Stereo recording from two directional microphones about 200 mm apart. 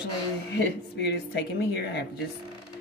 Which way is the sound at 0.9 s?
55° left (ahead or behind).